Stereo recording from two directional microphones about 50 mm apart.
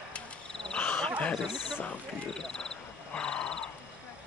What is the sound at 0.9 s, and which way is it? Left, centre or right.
Wild animals, left.